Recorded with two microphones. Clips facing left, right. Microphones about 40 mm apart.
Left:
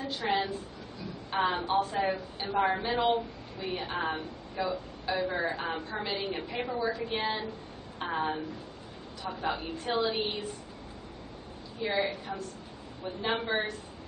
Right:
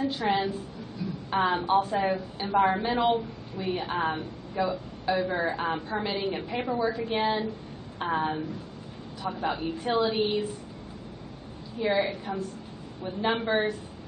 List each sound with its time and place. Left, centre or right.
0.1 s a woman's voice: centre
1.0 s a sound: centre
1.3 s a woman's voice: centre
11.8 s a woman's voice: centre